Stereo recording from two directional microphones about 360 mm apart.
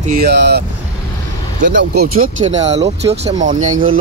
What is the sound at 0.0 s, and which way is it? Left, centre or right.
Speech, right.